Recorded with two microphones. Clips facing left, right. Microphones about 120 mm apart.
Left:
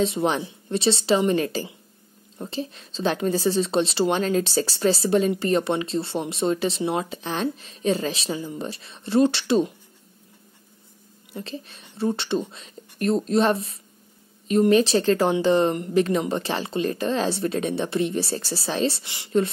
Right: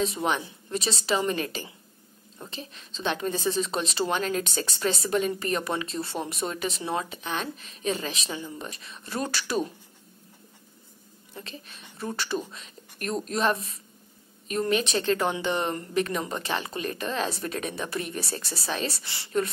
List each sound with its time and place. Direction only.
0.0 s speech: 30° left (ahead or behind)
11.3 s speech: 30° left (ahead or behind)
19.0 s speech: 15° left (ahead or behind)